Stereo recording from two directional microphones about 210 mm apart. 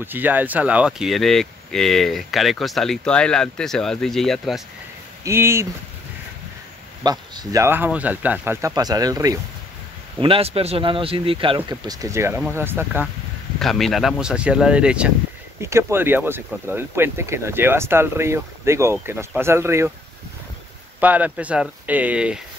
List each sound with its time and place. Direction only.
0.0 s speech: 10° right (ahead or behind)
5.2 s speech: 10° right (ahead or behind)
7.0 s speech: 20° right (ahead or behind)
13.6 s speech: centre (ahead or behind)
21.0 s speech: 5° right (ahead or behind)